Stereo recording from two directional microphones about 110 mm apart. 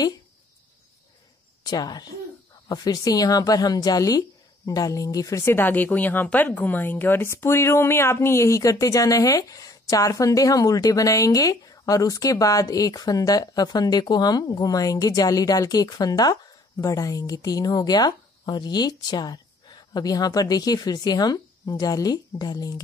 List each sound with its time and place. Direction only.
1.6 s a woman's voice: 40° left (ahead or behind)